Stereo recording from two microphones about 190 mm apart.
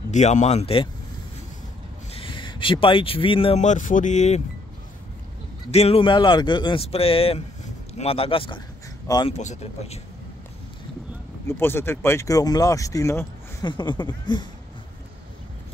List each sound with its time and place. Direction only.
0.1 s speech: 40° left (ahead or behind)
2.1 s speech: 25° left (ahead or behind)
5.7 s speech: 35° left (ahead or behind)
9.3 s speech: 35° left (ahead or behind)
11.4 s speech: 10° left (ahead or behind)